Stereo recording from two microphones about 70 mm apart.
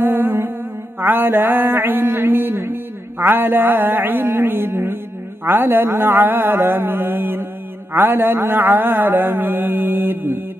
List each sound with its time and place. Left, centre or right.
0.0 s humming: right
1.0 s mantra: right
7.9 s a sound: right